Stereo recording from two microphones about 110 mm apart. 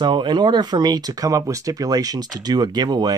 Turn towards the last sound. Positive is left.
turn(degrees=-40)  # may be behind; listen again after turning